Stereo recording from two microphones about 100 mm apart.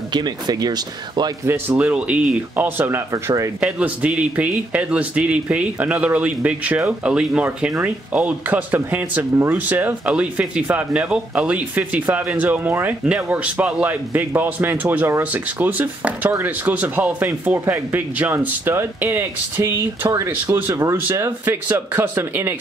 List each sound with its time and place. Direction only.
0.1 s speech: 45° right (ahead or behind)
1.8 s speech: 15° right (ahead or behind)
3.1 s speech: 30° right (ahead or behind)
3.6 s speech: 15° right (ahead or behind)